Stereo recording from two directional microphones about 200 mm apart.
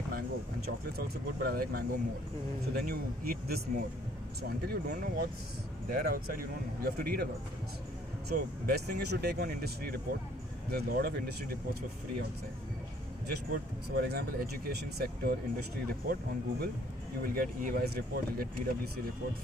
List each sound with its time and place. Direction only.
0.9 s speech: 50° right (ahead or behind)
8.3 s speech: 50° right (ahead or behind)
13.3 s speech: 55° right (ahead or behind)